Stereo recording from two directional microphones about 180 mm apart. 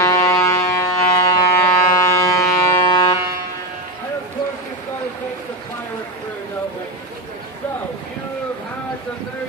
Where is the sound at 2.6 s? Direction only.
25° left (ahead or behind).